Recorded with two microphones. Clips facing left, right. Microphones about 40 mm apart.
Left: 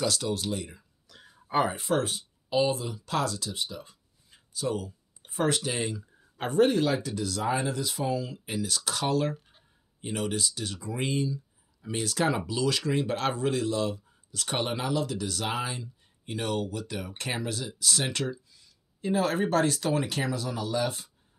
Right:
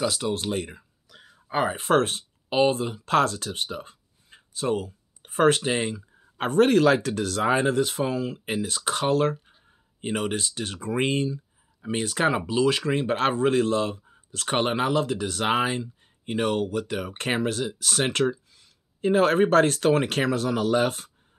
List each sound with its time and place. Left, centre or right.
0.0 s speech: centre
0.3 s speech: right
1.0 s a sound: centre
1.9 s speech: right
11.8 s speech: right